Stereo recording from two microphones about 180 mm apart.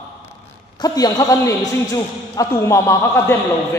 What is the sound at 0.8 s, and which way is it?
A man's voice, 20° left (ahead or behind).